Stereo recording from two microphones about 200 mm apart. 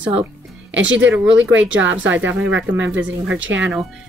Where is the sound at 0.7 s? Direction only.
65° right (ahead or behind).